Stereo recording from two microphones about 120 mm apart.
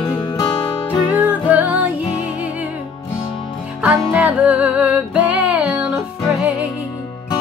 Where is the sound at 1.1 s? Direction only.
15° right (ahead or behind).